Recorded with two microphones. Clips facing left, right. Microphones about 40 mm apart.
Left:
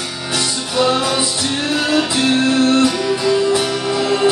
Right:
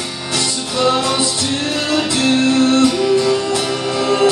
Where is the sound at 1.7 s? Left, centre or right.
Centre.